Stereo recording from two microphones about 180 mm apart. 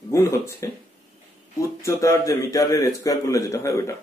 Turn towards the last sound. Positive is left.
turn(degrees=15)  # may be behind; listen again after turning